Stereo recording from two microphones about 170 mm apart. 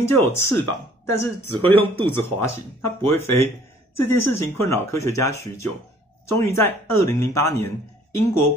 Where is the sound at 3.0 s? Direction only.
15° left (ahead or behind).